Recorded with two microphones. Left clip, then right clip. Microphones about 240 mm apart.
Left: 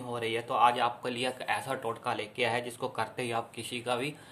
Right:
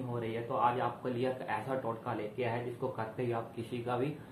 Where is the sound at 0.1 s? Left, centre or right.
Left.